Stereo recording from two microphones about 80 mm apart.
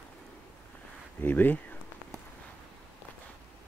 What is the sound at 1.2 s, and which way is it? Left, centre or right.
Speech, left.